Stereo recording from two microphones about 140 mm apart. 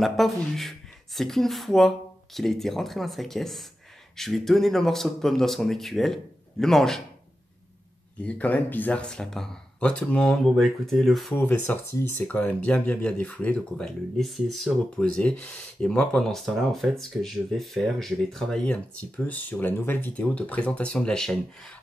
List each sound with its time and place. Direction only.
0.0 s speech: centre (ahead or behind)
8.2 s speech: 10° left (ahead or behind)
11.3 s speech: 10° left (ahead or behind)